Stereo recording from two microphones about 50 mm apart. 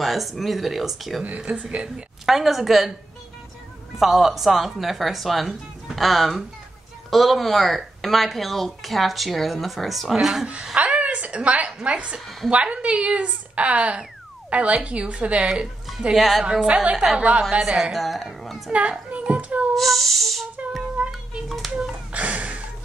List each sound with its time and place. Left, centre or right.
0.0 s speech: centre
1.2 s speech: right
2.2 s speech: centre
4.0 s speech: centre
10.4 s a woman's voice: right
16.2 s speech: centre
16.4 s speech: centre
16.9 s a woman's voice: centre
17.9 s speech: centre
18.7 s speech: right
19.7 s speech: centre
21.0 s music: right
21.5 s a sound: centre
21.7 s a sound: right